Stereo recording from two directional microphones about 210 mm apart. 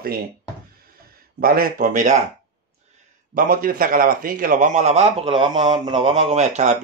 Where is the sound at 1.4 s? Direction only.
45° right (ahead or behind).